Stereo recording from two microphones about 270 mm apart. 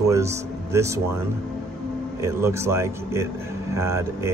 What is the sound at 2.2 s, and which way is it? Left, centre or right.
Speech, centre.